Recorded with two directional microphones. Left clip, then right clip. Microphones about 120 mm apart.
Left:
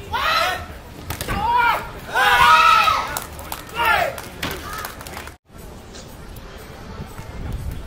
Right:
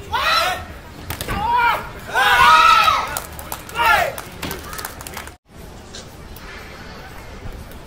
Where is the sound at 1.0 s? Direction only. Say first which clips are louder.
Even; centre (ahead or behind).